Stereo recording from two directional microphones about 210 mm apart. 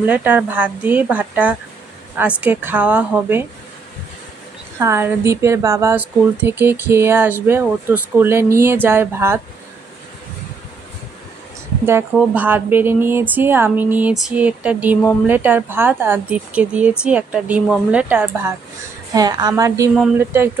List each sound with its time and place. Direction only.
0.0 s a woman's voice: 10° right (ahead or behind)
4.7 s a woman's voice: 10° right (ahead or behind)
12.2 s a woman's voice: 10° right (ahead or behind)